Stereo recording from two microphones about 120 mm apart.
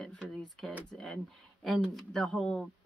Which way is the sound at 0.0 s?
5° left (ahead or behind).